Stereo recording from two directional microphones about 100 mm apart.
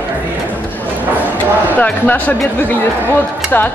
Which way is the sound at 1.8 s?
15° left (ahead or behind).